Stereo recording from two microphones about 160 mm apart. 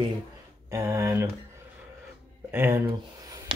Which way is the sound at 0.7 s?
20° right (ahead or behind).